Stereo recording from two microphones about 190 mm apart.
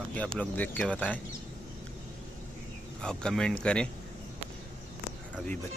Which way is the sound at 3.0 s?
5° left (ahead or behind).